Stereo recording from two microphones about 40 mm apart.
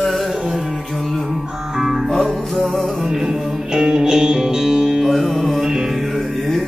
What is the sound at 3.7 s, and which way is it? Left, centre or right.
Music, centre.